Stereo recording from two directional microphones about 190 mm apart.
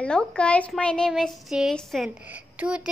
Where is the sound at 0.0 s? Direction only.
5° left (ahead or behind).